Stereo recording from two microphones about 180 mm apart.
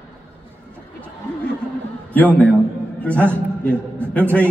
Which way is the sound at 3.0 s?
5° left (ahead or behind).